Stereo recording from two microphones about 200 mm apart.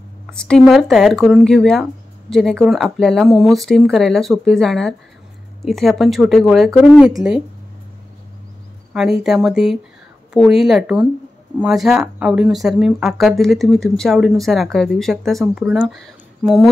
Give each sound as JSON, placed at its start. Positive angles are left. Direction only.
{"t": 0.3, "sound": "speech", "side_deg": 5}
{"t": 9.2, "sound": "speech", "side_deg": 0}